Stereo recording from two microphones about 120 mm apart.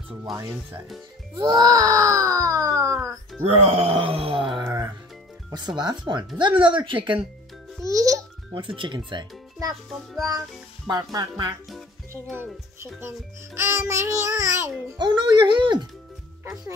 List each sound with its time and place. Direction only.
1.3 s wail: 35° right (ahead or behind)
3.4 s speech: 55° right (ahead or behind)
4.6 s music: 25° right (ahead or behind)
5.5 s speech: 35° right (ahead or behind)
7.8 s a child's voice: 30° right (ahead or behind)
8.5 s speech: 45° right (ahead or behind)
10.9 s speech: 35° right (ahead or behind)
13.6 s babbling: 25° right (ahead or behind)
15.0 s speech: 40° right (ahead or behind)